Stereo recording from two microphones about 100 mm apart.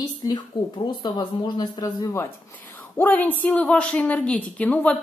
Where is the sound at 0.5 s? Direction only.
45° left (ahead or behind).